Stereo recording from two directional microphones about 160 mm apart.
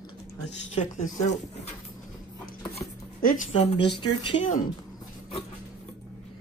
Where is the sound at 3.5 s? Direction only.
40° left (ahead or behind).